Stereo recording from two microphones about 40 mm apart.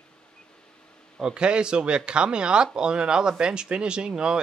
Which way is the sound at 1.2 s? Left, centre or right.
Right.